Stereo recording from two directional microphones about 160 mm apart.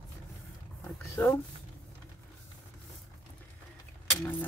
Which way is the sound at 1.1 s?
20° left (ahead or behind).